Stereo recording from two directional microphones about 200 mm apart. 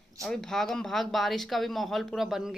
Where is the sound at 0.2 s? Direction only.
Centre (ahead or behind).